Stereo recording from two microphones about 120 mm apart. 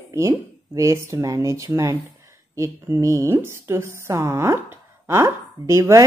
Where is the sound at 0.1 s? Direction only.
25° right (ahead or behind).